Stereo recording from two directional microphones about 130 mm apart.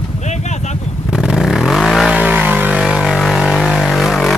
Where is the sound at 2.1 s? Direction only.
10° right (ahead or behind).